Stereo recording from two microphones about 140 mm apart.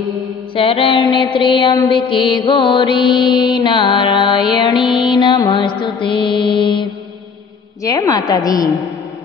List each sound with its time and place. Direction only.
0.6 s music: 40° left (ahead or behind)
4.9 s mantra: 35° left (ahead or behind)
7.8 s a woman's voice: 25° left (ahead or behind)